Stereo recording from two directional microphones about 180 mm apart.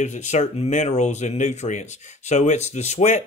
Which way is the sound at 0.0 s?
40° left (ahead or behind).